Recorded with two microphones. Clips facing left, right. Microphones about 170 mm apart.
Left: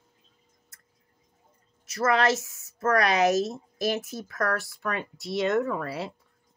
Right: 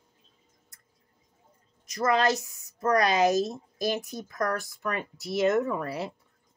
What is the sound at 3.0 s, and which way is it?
Speech, centre (ahead or behind).